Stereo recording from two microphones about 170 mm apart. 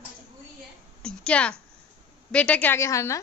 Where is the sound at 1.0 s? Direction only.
5° left (ahead or behind).